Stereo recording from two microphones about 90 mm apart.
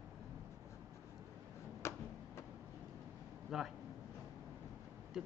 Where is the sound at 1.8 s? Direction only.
30° left (ahead or behind).